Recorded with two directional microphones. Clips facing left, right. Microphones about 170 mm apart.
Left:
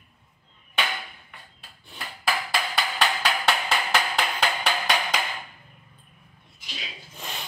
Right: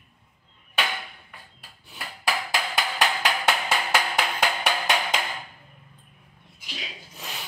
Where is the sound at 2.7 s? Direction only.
15° right (ahead or behind).